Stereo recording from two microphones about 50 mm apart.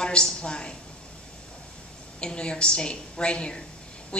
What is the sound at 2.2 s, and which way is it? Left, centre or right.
A woman's voice, centre.